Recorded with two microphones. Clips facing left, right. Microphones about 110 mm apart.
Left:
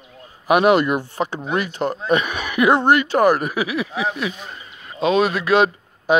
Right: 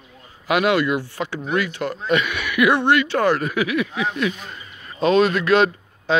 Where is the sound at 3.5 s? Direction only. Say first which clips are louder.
Right 1 dB; 25° left (ahead or behind).